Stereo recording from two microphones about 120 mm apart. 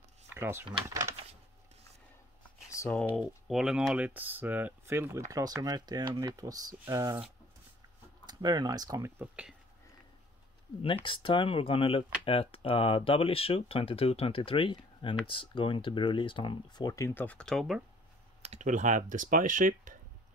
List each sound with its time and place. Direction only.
0.3 s speech: 20° right (ahead or behind)
2.8 s typing: 25° left (ahead or behind)
3.1 s speech: 5° right (ahead or behind); by 5.2 s 20° right (ahead or behind)
5.3 s speech: 30° right (ahead or behind)
8.3 s speech: 35° right (ahead or behind)
9.2 s speech: 10° right (ahead or behind)
10.8 s speech: 45° left (ahead or behind); by 17.1 s 30° left (ahead or behind)
17.1 s speech: 15° left (ahead or behind)
18.4 s speech: 75° right (ahead or behind)